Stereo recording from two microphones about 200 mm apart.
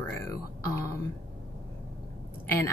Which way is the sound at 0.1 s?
15° left (ahead or behind).